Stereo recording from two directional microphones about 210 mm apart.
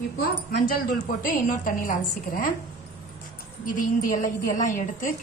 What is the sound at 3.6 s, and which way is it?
A woman's voice, 40° left (ahead or behind).